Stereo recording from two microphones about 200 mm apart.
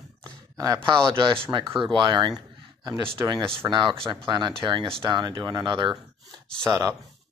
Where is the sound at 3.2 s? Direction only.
20° right (ahead or behind).